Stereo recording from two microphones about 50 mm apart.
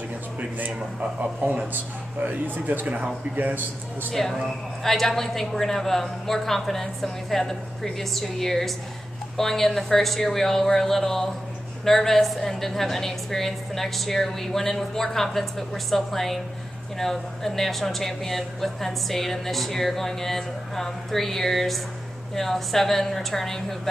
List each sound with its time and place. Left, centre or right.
0.4 s speech: right
4.1 s a woman's voice: centre